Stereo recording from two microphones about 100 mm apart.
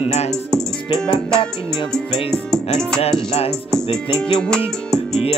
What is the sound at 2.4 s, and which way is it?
Music, 5° left (ahead or behind).